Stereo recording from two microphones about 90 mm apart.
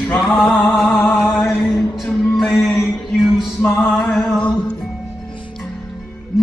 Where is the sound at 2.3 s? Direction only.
Centre (ahead or behind).